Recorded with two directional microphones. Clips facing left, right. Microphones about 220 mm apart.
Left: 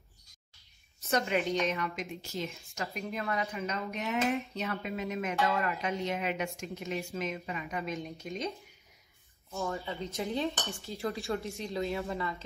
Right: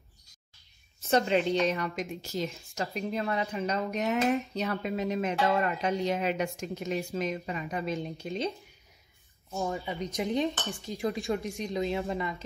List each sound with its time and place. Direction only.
1.1 s a woman's voice: 30° right (ahead or behind)
9.6 s speech: 15° right (ahead or behind)